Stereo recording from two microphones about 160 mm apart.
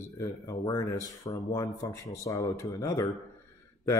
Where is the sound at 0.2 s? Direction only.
25° left (ahead or behind).